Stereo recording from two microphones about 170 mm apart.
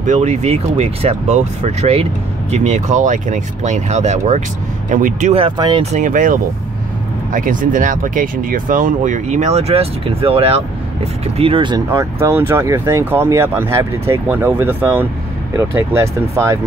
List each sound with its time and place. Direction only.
0.0 s speech: 45° right (ahead or behind)
5.3 s speech: 30° right (ahead or behind); by 6.3 s 50° right (ahead or behind)
7.3 s speech: 50° right (ahead or behind); by 16.5 s 15° right (ahead or behind)